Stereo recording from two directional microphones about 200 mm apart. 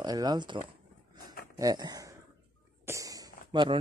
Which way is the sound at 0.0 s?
20° right (ahead or behind).